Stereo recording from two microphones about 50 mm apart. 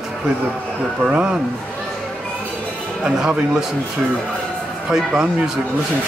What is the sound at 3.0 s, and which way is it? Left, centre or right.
Speech, centre.